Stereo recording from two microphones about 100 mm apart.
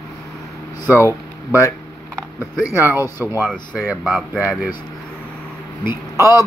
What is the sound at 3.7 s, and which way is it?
Speech, 15° right (ahead or behind).